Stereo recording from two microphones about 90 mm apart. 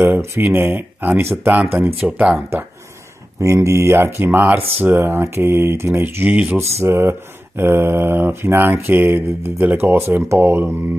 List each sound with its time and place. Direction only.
0.2 s speech: 30° right (ahead or behind); by 2.4 s 10° right (ahead or behind)
3.3 s speech: 35° right (ahead or behind); by 6.6 s 15° right (ahead or behind)
6.6 s speech: 30° right (ahead or behind)